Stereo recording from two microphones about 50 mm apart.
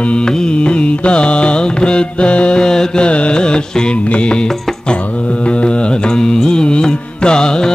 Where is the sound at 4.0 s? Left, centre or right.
Left.